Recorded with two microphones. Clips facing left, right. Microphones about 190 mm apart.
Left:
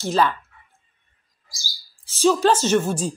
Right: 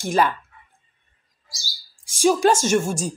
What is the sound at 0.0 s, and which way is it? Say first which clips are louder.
Speech: even; 15° right (ahead or behind).